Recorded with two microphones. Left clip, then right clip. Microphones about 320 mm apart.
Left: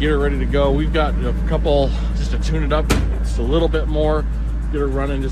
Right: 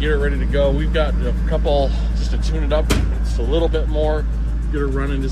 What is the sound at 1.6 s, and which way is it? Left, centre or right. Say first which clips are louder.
Speech: left 1 dB; left.